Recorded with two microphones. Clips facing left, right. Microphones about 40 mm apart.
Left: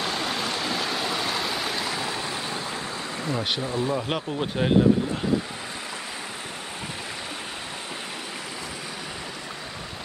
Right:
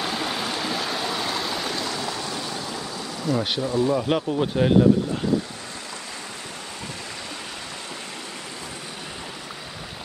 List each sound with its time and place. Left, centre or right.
0.0 s stream: centre; by 2.8 s left
3.3 s speech: left
3.9 s speech: centre